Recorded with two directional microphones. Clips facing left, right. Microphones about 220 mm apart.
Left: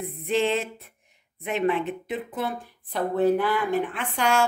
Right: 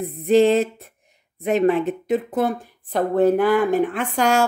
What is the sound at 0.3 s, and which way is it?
Speech, 40° right (ahead or behind).